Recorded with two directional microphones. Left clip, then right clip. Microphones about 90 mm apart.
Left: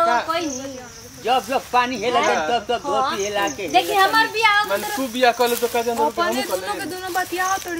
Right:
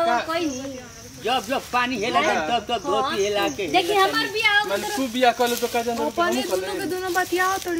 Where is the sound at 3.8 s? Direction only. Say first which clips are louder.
Left 4 dB; 10° left (ahead or behind).